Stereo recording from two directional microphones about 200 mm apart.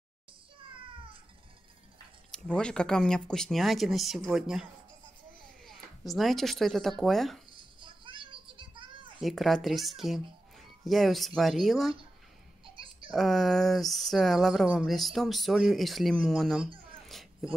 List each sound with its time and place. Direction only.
2.3 s speech: 5° left (ahead or behind)
7.5 s music: 25° right (ahead or behind)
9.2 s speech: centre (ahead or behind)
12.7 s a sound: 25° right (ahead or behind)
13.1 s speech: centre (ahead or behind)
17.1 s a sound: centre (ahead or behind)